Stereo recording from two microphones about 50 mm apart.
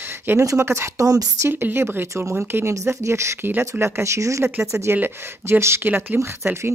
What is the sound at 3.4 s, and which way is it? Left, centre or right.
Speech, right.